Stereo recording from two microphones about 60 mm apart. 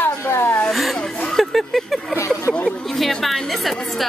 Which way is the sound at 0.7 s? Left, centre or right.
Centre.